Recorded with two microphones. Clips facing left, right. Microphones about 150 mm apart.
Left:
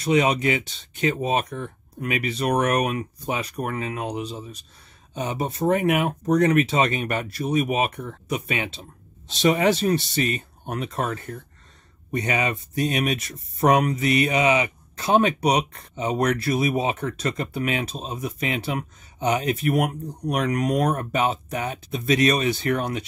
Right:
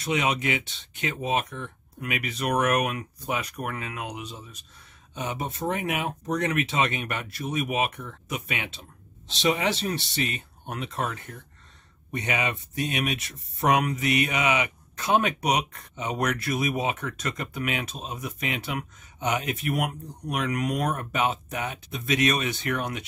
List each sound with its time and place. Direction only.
0.0 s speech: 35° left (ahead or behind)
9.3 s speech: 45° left (ahead or behind)